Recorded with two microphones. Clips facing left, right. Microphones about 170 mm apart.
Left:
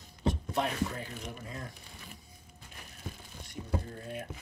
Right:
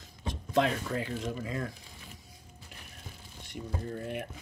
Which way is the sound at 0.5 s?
90° right.